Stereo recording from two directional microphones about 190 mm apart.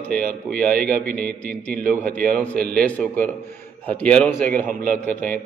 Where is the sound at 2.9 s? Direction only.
5° left (ahead or behind).